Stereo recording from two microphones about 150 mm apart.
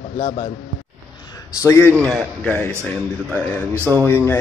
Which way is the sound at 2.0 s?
Centre (ahead or behind).